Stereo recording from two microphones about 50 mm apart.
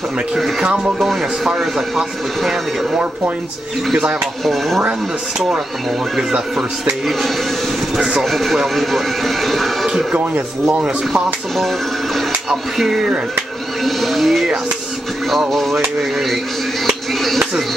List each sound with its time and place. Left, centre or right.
0.6 s speech: centre
0.9 s speech: centre
4.5 s speech: centre
7.1 s speech: centre
10.1 s speech: right
12.4 s speech: centre
15.5 s speech: centre
16.8 s a sound: centre